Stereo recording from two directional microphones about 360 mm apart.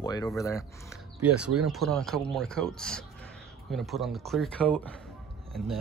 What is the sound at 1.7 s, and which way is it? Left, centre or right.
Speech, centre.